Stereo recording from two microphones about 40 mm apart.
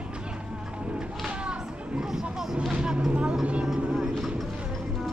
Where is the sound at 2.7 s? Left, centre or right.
Right.